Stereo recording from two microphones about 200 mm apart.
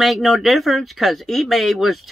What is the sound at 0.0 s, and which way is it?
Speech, centre (ahead or behind).